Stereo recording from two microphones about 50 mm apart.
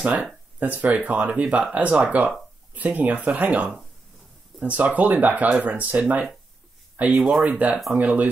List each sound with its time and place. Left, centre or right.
0.0 s speech: right
7.2 s speech: centre
7.4 s speech: right